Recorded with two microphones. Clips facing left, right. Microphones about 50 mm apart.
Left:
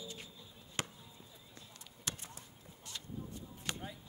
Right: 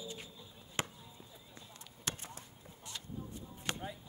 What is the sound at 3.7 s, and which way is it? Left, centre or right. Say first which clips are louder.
Chop: right 2 dB; right.